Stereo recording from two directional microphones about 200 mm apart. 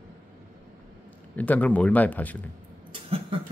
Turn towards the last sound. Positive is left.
turn(degrees=-25)  # may be behind; listen again after turning